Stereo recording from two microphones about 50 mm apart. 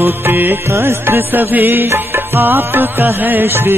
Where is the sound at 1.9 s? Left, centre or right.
Right.